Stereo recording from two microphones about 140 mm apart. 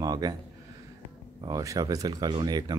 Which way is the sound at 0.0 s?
30° right (ahead or behind).